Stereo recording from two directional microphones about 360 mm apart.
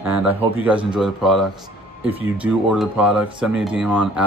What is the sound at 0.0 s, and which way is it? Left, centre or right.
Speech, centre.